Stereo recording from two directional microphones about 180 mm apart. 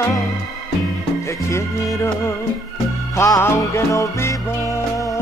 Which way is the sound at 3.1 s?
15° left (ahead or behind).